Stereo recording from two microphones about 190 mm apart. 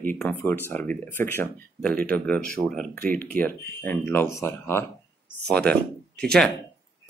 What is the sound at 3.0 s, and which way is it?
Speech, 45° right (ahead or behind).